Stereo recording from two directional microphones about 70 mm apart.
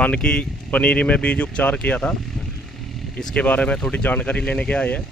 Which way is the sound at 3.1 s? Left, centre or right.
Centre.